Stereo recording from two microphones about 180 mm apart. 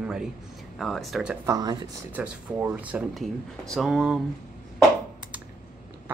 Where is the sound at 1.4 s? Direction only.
20° right (ahead or behind).